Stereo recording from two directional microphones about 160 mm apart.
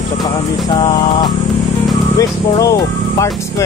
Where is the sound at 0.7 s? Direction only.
30° left (ahead or behind).